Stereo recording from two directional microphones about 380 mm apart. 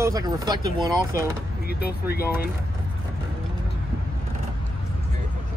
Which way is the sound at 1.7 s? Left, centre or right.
Left.